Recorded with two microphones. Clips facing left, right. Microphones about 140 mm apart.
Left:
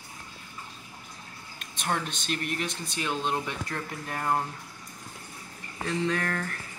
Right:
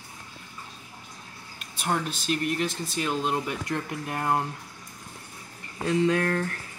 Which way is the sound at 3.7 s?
15° right (ahead or behind).